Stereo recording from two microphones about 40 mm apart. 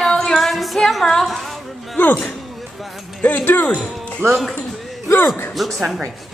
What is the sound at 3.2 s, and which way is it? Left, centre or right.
Speech, left.